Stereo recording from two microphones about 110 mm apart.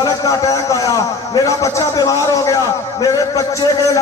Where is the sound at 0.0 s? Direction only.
30° left (ahead or behind).